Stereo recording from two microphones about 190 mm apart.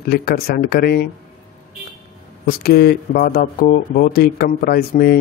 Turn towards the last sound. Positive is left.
turn(degrees=50)  # may be behind; listen again after turning